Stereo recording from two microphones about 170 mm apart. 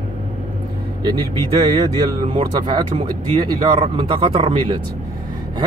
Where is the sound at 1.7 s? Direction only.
30° right (ahead or behind).